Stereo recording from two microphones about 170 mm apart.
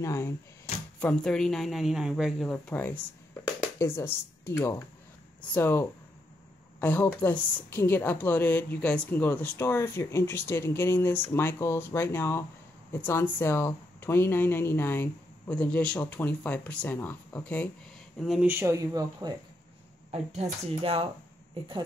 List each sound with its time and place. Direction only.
0.0 s speech: 15° left (ahead or behind)
0.9 s a woman's voice: 5° left (ahead or behind)
18.2 s a woman's voice: centre (ahead or behind)
18.5 s speech: 15° right (ahead or behind)
20.1 s speech: 40° right (ahead or behind)